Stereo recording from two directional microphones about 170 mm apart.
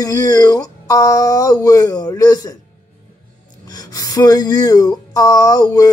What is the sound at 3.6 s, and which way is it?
Speech, 20° left (ahead or behind).